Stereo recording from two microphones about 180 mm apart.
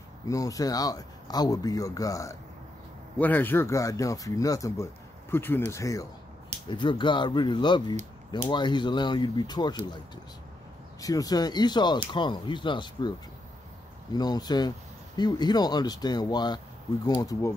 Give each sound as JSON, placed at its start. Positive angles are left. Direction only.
{"t": 0.3, "sound": "speech", "side_deg": 20}
{"t": 11.0, "sound": "speech", "side_deg": 20}
{"t": 14.1, "sound": "speech", "side_deg": 20}